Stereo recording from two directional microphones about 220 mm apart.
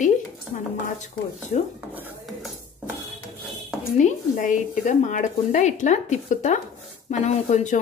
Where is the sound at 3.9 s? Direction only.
35° left (ahead or behind).